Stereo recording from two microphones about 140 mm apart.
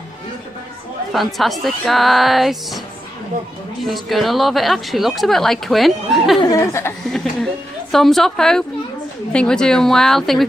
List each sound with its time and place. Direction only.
1.1 s a woman's voice: centre (ahead or behind)
3.8 s a woman's voice: centre (ahead or behind)
6.4 s speech: 25° left (ahead or behind)
7.1 s a woman's voice: 5° left (ahead or behind)